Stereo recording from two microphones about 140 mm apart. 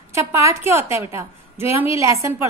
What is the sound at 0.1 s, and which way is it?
A woman's voice, 20° right (ahead or behind).